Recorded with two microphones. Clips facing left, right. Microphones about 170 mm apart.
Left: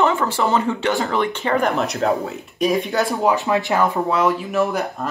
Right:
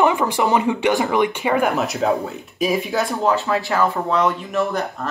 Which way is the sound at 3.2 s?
15° left (ahead or behind).